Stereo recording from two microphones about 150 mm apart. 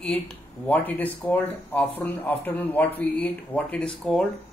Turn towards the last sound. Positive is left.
turn(degrees=5)  # may be behind; listen again after turning